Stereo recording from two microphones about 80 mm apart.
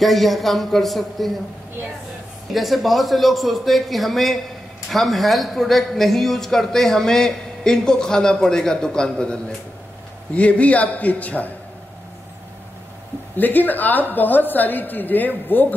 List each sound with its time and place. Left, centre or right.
0.0 s a man's voice: centre
2.5 s a man's voice: centre
13.4 s a woman's voice: left